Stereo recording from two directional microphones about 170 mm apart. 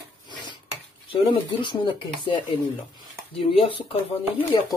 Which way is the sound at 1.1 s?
30° left (ahead or behind).